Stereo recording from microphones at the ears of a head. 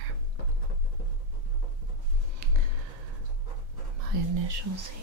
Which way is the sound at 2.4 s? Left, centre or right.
Right.